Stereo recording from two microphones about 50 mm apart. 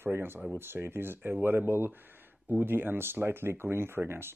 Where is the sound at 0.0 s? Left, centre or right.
Right.